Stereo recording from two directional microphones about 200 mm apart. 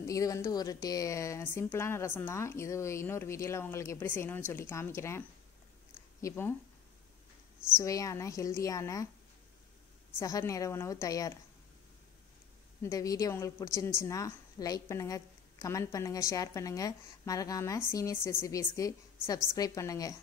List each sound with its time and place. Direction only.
0.0 s a woman's voice: 15° left (ahead or behind)
6.2 s a woman's voice: 10° left (ahead or behind)
7.7 s a woman's voice: 15° left (ahead or behind)
10.1 s a woman's voice: 15° left (ahead or behind)
12.8 s a woman's voice: 15° left (ahead or behind)